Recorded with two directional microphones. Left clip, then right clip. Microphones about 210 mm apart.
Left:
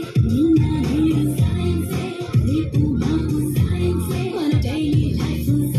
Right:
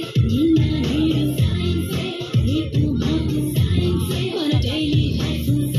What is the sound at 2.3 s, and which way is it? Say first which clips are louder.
Music: left 2 dB; 30° left (ahead or behind).